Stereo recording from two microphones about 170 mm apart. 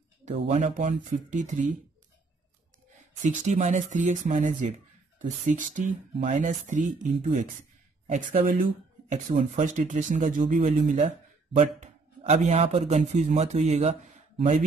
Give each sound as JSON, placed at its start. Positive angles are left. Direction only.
{"t": 0.2, "sound": "speech", "side_deg": -45}
{"t": 3.3, "sound": "speech", "side_deg": -45}